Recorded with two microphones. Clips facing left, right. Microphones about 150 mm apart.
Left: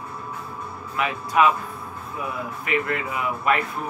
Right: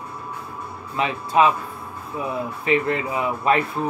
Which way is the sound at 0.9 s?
30° right (ahead or behind).